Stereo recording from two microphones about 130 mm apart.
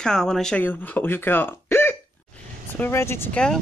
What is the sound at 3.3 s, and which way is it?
Speech, 5° left (ahead or behind).